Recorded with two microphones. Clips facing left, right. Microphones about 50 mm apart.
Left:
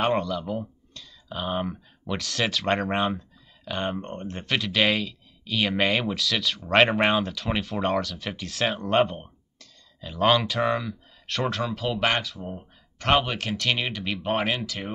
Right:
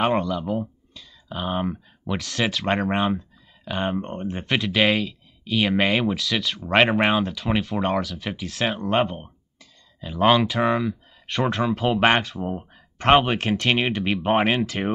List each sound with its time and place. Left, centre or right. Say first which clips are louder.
0.0 s speech: right 2 dB; centre
11.8 s speech: right 6 dB; right